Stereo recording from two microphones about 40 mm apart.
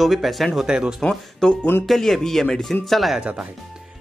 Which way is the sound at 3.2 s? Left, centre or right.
Right.